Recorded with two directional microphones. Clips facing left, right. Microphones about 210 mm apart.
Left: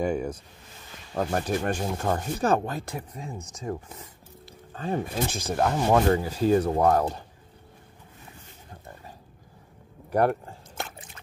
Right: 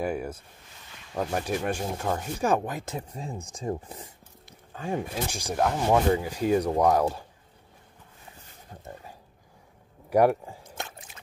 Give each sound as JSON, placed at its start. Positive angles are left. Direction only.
{"t": 0.0, "sound": "speech", "side_deg": -5}
{"t": 4.7, "sound": "speech", "side_deg": -10}
{"t": 6.0, "sound": "speech", "side_deg": -15}
{"t": 10.0, "sound": "biting", "side_deg": -10}